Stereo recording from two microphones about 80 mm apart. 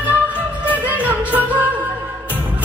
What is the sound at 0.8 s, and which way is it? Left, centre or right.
Music, right.